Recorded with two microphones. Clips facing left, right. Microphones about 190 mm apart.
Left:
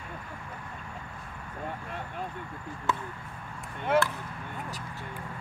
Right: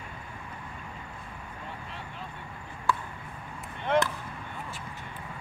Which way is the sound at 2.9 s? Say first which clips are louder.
Right 2 dB; 20° left (ahead or behind).